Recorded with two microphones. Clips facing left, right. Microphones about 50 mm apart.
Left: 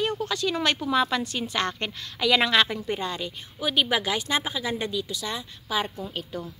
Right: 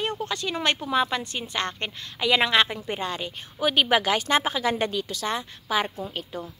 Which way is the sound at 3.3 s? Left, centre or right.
Right.